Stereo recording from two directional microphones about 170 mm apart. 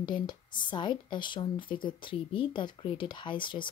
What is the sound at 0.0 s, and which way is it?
Speech, 25° left (ahead or behind).